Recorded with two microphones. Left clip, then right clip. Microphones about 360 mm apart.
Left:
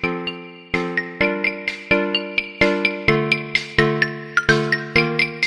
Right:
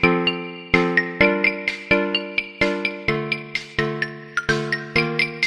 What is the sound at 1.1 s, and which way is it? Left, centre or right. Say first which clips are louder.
Music: right 1 dB; right.